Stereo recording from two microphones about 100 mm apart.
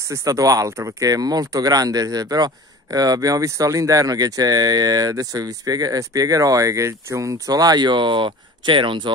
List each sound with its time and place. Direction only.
0.1 s speech: 35° right (ahead or behind); by 9.1 s 55° right (ahead or behind)